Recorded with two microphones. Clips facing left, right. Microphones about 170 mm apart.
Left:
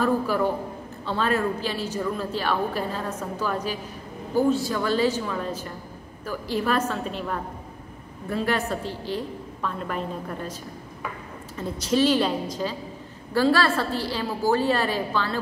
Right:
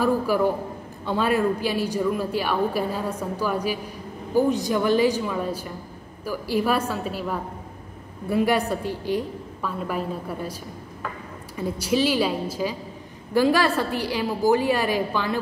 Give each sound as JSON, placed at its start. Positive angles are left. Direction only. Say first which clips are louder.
{"t": 0.0, "sound": "a woman's voice", "louder": "right 2 dB", "side_deg": -10}
{"t": 11.5, "sound": "a woman's voice", "louder": "right 1 dB", "side_deg": -10}